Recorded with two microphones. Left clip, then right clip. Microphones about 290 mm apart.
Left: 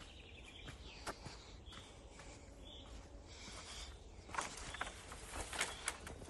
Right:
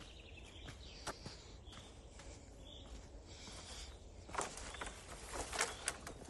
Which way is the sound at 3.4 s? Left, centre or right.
Centre.